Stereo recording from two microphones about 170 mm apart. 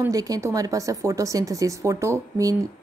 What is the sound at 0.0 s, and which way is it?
Speech, 20° right (ahead or behind).